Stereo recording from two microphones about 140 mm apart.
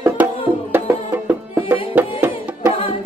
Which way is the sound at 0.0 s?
10° right (ahead or behind).